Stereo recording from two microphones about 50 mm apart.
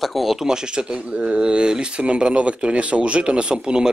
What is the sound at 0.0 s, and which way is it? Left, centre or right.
Speech, centre.